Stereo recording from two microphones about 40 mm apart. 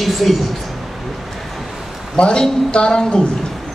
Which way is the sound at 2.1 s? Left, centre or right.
Left.